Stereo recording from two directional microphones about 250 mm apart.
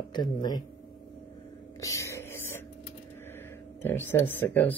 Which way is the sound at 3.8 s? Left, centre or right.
Centre.